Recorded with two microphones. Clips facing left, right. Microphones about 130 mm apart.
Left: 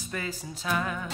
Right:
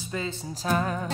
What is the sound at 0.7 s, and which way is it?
Music, 35° right (ahead or behind).